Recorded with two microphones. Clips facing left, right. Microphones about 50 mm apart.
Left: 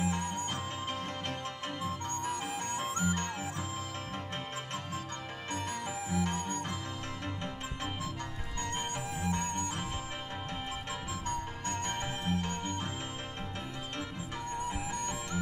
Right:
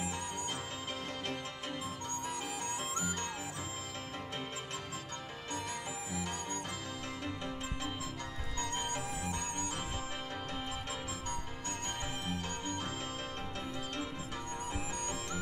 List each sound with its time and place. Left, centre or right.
0.0 s music: left
1.8 s music: left
5.5 s music: left
8.5 s music: left
11.2 s music: left
14.6 s music: left